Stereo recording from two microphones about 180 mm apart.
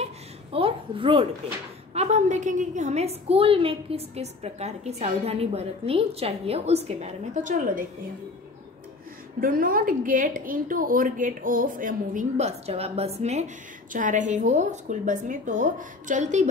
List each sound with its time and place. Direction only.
0.0 s a sound: 30° right (ahead or behind)
2.0 s a woman's voice: 40° right (ahead or behind)
9.4 s a woman's voice: 50° right (ahead or behind)